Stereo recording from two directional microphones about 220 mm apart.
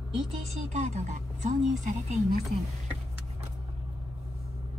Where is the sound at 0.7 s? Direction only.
30° right (ahead or behind).